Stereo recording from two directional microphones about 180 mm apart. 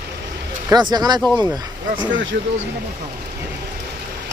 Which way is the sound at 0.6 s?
20° right (ahead or behind).